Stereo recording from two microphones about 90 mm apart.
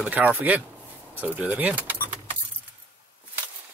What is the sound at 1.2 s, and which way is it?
Speech, 20° right (ahead or behind).